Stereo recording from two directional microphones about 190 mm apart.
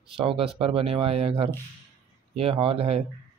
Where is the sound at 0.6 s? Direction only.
30° right (ahead or behind).